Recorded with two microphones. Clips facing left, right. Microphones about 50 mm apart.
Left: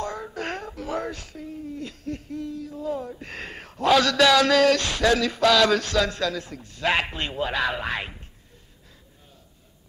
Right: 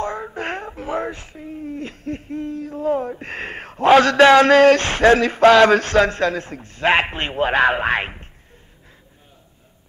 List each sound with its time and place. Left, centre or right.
0.0 s speech: right